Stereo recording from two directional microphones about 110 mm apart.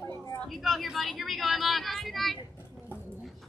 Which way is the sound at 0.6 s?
Centre (ahead or behind).